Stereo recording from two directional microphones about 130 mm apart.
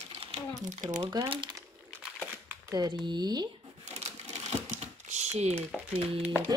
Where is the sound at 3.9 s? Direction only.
60° right (ahead or behind).